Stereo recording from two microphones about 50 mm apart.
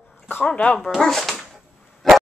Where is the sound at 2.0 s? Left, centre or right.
Centre.